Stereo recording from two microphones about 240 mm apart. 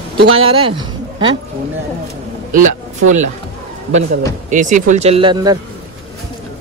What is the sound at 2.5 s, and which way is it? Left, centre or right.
Speech, right.